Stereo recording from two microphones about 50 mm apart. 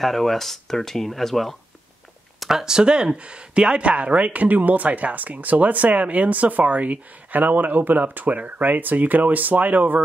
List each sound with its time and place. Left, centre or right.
0.0 s speech: centre
2.4 s speech: centre; by 10.0 s right